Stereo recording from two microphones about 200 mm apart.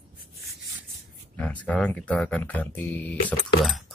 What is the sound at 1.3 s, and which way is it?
Speech, 10° left (ahead or behind).